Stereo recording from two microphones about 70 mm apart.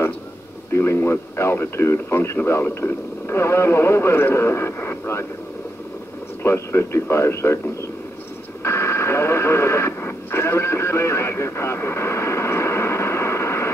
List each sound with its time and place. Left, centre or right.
0.7 s speech: left
6.4 s speech: left
8.6 s radio: left